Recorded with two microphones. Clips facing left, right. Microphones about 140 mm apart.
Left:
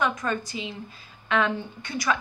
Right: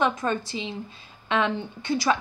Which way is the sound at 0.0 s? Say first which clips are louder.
Right 2 dB; 25° right (ahead or behind).